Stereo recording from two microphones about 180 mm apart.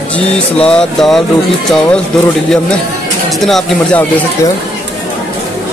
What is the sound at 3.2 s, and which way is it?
Speech, centre (ahead or behind).